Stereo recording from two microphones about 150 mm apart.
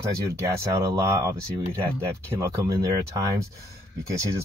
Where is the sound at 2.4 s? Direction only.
20° right (ahead or behind).